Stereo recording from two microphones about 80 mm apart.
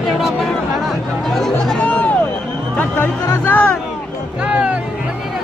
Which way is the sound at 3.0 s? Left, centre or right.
Left.